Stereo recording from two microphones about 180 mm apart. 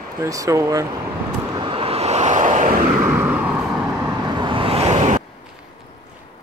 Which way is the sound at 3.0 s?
10° right (ahead or behind).